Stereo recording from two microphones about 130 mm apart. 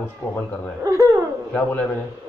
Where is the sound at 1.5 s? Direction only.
10° left (ahead or behind).